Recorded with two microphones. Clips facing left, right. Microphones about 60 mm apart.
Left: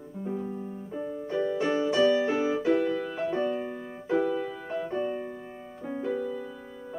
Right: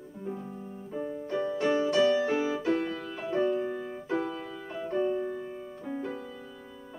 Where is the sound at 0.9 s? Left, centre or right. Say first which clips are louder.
Left 1 dB; centre.